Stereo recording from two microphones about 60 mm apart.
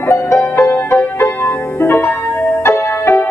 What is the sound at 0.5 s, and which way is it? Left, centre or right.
Music, left.